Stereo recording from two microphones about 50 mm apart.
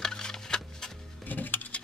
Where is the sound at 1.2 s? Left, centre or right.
Left.